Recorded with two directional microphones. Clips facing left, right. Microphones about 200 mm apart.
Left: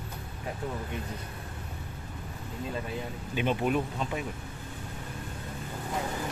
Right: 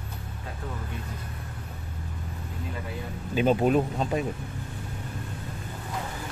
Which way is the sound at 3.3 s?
35° right (ahead or behind).